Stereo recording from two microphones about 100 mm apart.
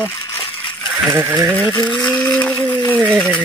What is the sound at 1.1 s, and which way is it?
Speech, 30° right (ahead or behind).